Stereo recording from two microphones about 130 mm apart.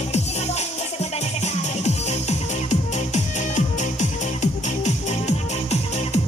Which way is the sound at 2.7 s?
65° left (ahead or behind).